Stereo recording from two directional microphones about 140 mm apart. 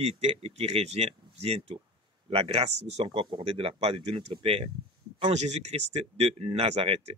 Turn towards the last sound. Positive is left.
turn(degrees=-45)  # may be behind; listen again after turning